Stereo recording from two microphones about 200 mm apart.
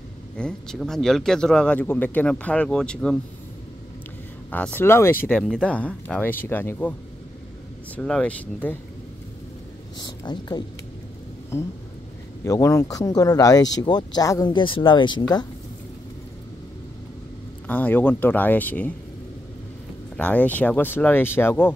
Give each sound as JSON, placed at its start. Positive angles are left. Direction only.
{"t": 0.4, "sound": "speech", "side_deg": 5}
{"t": 4.5, "sound": "speech", "side_deg": 10}
{"t": 9.9, "sound": "speech", "side_deg": 20}
{"t": 17.6, "sound": "speech", "side_deg": 10}
{"t": 20.2, "sound": "speech", "side_deg": 5}